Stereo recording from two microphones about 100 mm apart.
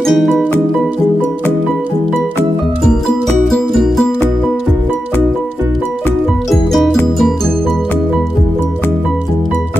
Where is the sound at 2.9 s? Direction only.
5° left (ahead or behind).